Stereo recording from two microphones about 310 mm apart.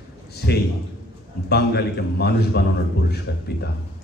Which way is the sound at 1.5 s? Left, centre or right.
Left.